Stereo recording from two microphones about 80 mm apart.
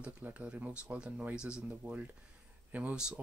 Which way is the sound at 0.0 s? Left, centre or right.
Centre.